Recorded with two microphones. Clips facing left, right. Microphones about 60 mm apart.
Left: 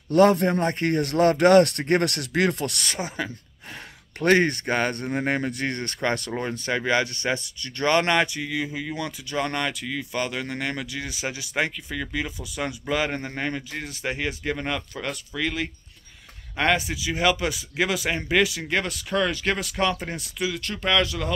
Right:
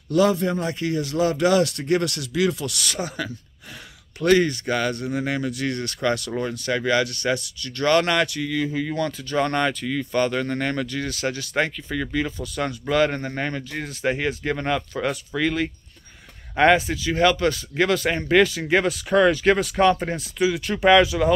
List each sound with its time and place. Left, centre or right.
0.1 s speech: left
2.8 s speech: left
4.2 s speech: left; by 21.3 s centre